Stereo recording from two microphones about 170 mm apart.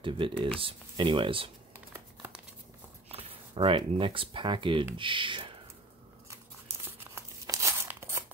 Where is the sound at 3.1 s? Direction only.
35° right (ahead or behind).